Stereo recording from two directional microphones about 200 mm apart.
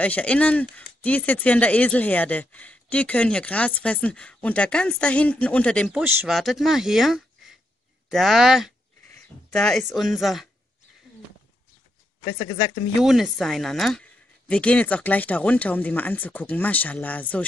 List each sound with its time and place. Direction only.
0.0 s speech: 5° left (ahead or behind)
12.3 s speech: 15° left (ahead or behind)
13.0 s speech: centre (ahead or behind)